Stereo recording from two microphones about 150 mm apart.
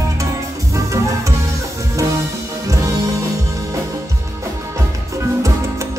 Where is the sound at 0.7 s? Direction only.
20° right (ahead or behind).